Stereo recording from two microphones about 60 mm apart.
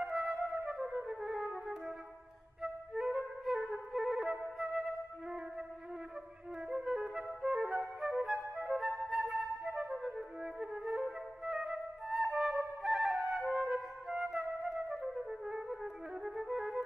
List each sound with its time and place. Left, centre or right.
0.0 s flute: centre
1.5 s music: centre
2.6 s flute: centre
6.7 s flute: centre